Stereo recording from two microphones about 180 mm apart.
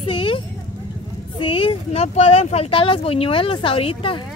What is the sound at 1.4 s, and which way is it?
Speech, 30° left (ahead or behind).